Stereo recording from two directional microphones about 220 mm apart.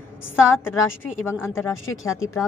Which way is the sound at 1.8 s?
65° left (ahead or behind).